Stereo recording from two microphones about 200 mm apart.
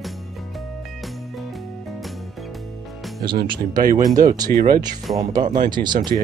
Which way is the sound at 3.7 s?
45° right (ahead or behind).